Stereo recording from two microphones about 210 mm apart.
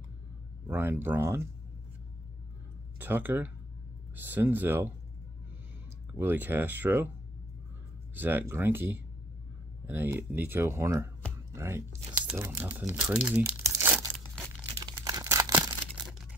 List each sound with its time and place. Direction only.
0.7 s speech: 10° right (ahead or behind)
3.0 s speech: 10° right (ahead or behind)
6.1 s speech: 10° right (ahead or behind)
8.1 s speech: 10° right (ahead or behind)
12.3 s crumpling: 10° right (ahead or behind)
14.8 s tearing: 15° right (ahead or behind)